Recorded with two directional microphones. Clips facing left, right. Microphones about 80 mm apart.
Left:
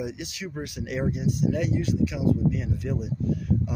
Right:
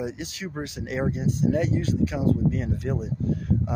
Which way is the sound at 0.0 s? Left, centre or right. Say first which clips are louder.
Right 1 dB; right.